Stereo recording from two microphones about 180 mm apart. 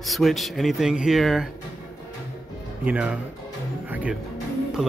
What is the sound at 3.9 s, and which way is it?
Music, 5° right (ahead or behind).